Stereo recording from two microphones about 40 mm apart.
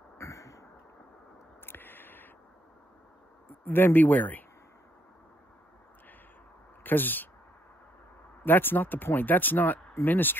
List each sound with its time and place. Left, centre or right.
1.7 s a sound: left
3.6 s speech: left
6.8 s speech: left
8.5 s speech: left